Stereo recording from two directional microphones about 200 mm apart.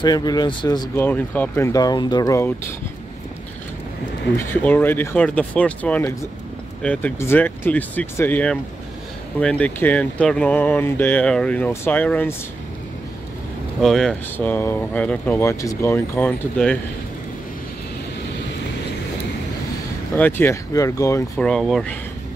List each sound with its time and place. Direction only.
0.0 s speech: 20° left (ahead or behind)
4.6 s speech: 10° left (ahead or behind)
13.7 s speech: centre (ahead or behind)
20.2 s speech: 10° left (ahead or behind)
21.4 s speech: centre (ahead or behind)